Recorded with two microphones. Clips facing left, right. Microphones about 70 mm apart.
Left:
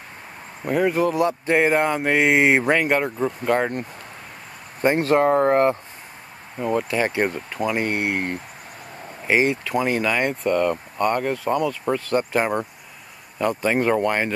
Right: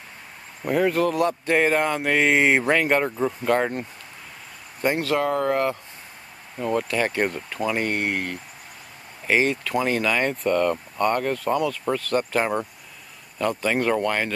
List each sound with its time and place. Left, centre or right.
0.7 s speech: centre
2.6 s speech: centre
4.8 s speech: left
6.6 s speech: centre
9.3 s speech: centre
12.0 s speech: left